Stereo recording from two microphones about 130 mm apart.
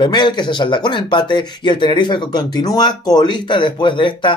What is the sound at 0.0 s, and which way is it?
Speech, 35° left (ahead or behind).